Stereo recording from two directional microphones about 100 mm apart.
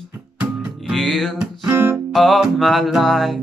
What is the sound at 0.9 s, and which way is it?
Music, centre (ahead or behind).